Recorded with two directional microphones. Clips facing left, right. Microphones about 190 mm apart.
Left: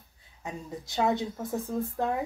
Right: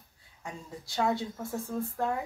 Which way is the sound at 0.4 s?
20° left (ahead or behind).